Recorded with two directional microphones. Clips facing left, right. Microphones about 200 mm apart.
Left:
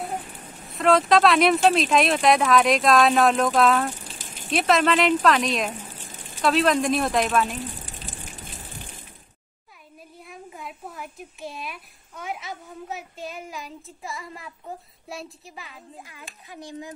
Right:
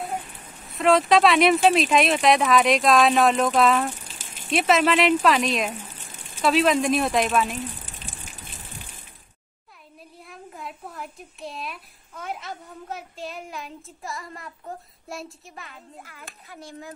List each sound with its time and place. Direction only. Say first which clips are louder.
0.7 s speech: even; centre (ahead or behind)
10.2 s speech: even; centre (ahead or behind)
16.0 s speech: even; 15° left (ahead or behind)